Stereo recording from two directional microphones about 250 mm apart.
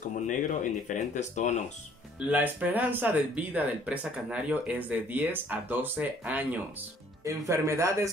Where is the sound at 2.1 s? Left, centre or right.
Centre.